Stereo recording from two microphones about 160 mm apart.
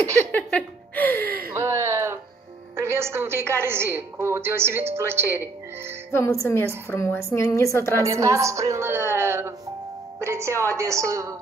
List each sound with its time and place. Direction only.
0.3 s a sound: 10° left (ahead or behind)
1.5 s a sound: 15° right (ahead or behind)
2.7 s a woman's voice: 15° right (ahead or behind)
6.1 s a woman's voice: 15° left (ahead or behind)
8.1 s a woman's voice: 20° right (ahead or behind)
10.1 s music: 15° right (ahead or behind)
10.7 s a woman's voice: 20° right (ahead or behind)